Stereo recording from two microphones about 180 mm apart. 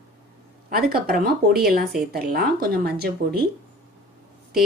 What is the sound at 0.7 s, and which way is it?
A woman's voice, 60° right (ahead or behind).